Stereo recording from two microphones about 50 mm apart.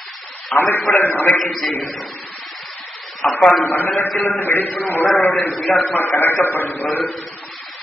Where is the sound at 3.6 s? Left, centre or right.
Left.